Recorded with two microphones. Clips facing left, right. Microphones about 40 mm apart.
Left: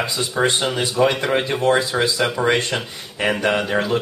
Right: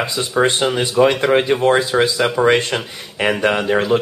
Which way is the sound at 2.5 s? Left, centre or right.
Right.